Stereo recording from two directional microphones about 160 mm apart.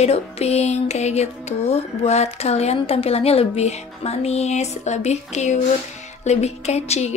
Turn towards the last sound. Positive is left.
turn(degrees=40)  # may be behind; listen again after turning